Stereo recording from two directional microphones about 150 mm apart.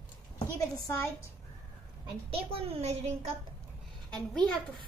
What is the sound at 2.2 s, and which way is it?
A child's voice, 40° right (ahead or behind).